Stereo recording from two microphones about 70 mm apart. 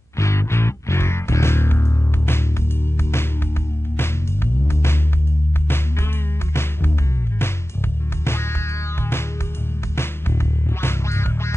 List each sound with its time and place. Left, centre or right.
0.2 s music: left
4.6 s music: left
8.2 s music: left
9.9 s music: left